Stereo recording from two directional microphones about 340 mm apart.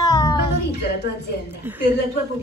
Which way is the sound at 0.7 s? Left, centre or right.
Left.